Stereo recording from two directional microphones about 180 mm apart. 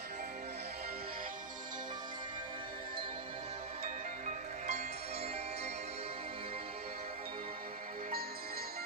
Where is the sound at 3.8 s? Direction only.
45° right (ahead or behind).